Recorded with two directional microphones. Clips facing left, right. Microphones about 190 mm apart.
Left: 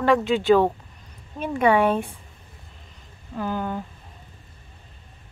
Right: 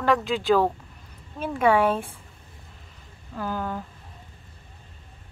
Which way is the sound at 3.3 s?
Centre (ahead or behind).